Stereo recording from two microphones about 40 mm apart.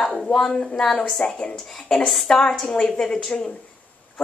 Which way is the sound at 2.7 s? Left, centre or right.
Centre.